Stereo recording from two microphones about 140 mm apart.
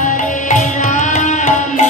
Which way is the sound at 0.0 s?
65° left (ahead or behind).